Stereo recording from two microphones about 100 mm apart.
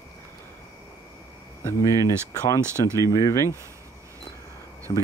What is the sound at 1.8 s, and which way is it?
Speech, 30° left (ahead or behind).